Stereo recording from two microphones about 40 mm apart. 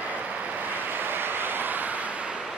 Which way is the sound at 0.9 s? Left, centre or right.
Right.